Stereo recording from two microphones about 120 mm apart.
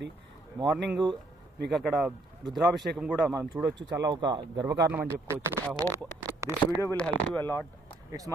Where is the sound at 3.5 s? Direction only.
15° right (ahead or behind).